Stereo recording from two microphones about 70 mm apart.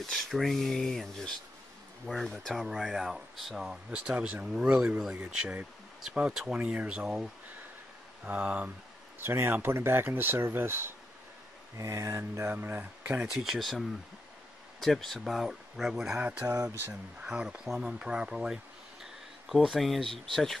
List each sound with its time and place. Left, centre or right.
0.0 s speech: centre
8.3 s speech: right
9.2 s speech: right
11.7 s mantra: right
12.5 s speech: right
13.3 s speech: centre
16.2 s speech: right; by 20.5 s centre